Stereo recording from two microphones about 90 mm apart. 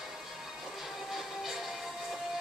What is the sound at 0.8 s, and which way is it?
Music, centre (ahead or behind).